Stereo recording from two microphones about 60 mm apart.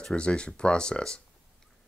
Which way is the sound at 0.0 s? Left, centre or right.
Centre.